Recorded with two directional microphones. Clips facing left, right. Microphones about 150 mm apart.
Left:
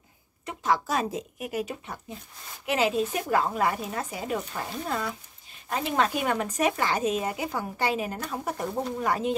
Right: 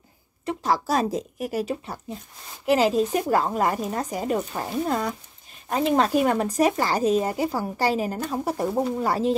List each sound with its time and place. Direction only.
0.8 s speech: 35° right (ahead or behind)